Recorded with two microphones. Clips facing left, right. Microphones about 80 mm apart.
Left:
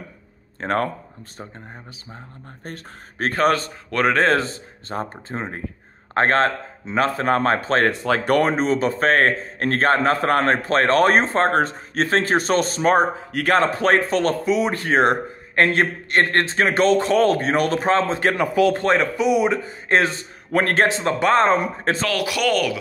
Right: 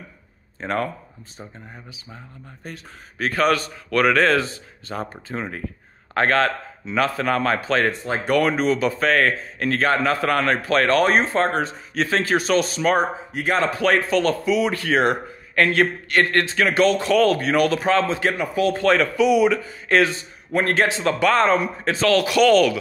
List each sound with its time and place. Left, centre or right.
0.6 s speech: left
2.6 s speech: left
7.9 s speech: left
8.4 s speech: left
13.3 s speech: left
13.6 s speech: left
18.3 s speech: left
18.8 s speech: left
20.5 s speech: left
22.0 s speech: centre